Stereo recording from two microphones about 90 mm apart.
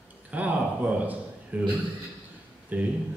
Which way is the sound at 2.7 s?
20° right (ahead or behind).